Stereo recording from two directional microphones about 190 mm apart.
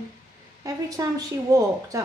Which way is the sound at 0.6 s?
20° right (ahead or behind).